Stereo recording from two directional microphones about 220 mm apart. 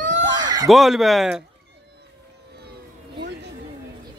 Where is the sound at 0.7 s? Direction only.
Centre (ahead or behind).